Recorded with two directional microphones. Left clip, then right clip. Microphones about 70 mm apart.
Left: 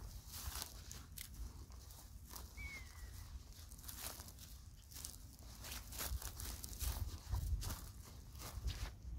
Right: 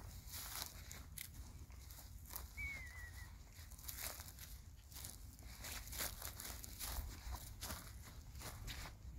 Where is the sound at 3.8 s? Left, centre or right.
Right.